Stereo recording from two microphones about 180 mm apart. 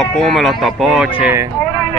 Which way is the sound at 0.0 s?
5° left (ahead or behind).